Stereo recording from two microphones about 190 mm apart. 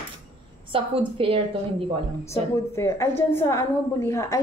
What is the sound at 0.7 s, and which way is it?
Speech, 30° right (ahead or behind).